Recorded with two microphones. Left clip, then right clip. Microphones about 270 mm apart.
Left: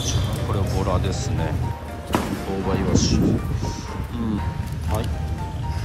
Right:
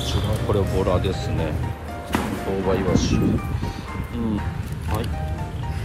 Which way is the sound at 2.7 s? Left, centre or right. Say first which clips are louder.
Even; centre.